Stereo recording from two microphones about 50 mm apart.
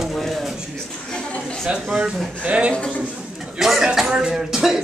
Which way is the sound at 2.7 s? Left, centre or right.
Centre.